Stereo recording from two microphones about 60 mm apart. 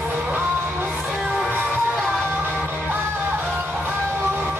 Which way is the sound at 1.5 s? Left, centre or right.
Right.